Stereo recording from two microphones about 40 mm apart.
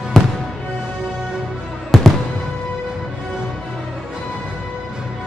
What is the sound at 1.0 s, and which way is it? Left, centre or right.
Music, centre.